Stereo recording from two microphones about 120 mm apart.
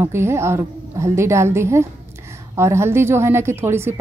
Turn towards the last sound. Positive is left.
turn(degrees=-20)  # may be behind; listen again after turning